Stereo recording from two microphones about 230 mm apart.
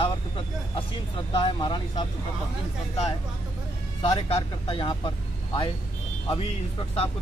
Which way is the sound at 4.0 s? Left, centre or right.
Left.